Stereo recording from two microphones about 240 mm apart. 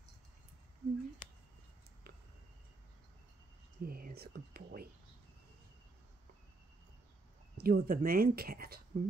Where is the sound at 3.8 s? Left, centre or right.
Right.